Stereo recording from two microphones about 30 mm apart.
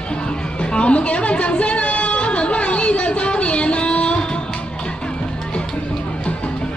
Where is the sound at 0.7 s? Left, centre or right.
Left.